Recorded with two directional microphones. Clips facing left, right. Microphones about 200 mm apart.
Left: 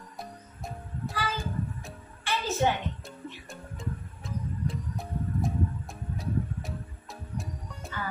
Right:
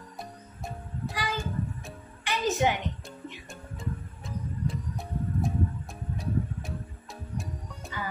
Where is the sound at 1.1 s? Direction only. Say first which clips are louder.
Even; 15° right (ahead or behind).